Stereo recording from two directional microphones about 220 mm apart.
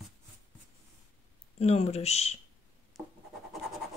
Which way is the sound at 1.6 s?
30° left (ahead or behind).